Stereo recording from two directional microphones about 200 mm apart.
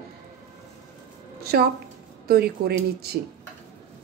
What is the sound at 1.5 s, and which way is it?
Speech, 50° right (ahead or behind).